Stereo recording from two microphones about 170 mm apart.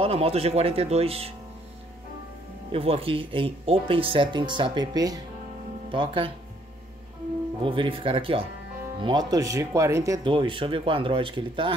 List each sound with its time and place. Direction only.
0.0 s speech: 35° right (ahead or behind)
2.7 s speech: 35° right (ahead or behind)
7.6 s speech: 30° right (ahead or behind)